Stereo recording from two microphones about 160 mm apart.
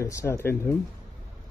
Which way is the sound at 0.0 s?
20° left (ahead or behind).